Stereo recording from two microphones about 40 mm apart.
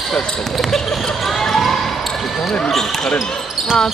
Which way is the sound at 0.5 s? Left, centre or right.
Centre.